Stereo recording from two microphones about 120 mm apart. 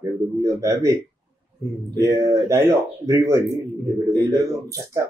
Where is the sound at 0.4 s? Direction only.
25° right (ahead or behind).